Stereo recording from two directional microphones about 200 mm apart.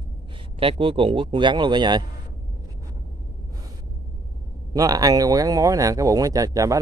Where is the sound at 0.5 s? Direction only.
25° right (ahead or behind).